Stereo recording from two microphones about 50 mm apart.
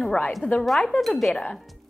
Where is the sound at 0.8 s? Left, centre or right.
Centre.